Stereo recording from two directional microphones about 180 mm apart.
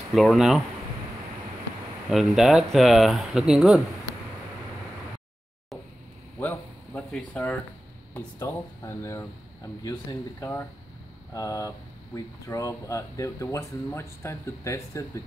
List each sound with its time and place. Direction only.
0.1 s speech: centre (ahead or behind)
2.0 s speech: centre (ahead or behind)
6.4 s a sound: 10° left (ahead or behind)
8.1 s speech: 15° left (ahead or behind)